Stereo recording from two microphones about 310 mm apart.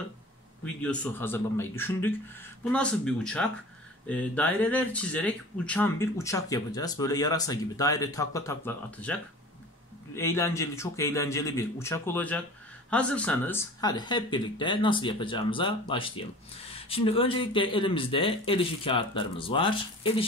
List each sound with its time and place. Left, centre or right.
0.8 s speech: centre